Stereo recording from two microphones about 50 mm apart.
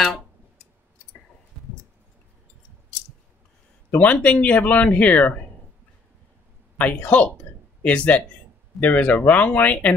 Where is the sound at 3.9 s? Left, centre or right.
Left.